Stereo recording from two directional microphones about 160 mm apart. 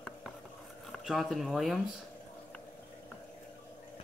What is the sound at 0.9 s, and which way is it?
Speech, centre (ahead or behind).